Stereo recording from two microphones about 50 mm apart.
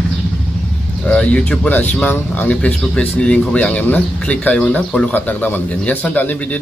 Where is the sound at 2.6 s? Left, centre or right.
Left.